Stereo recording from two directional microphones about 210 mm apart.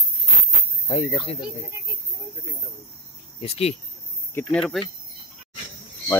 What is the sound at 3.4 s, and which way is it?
Speech, 30° left (ahead or behind).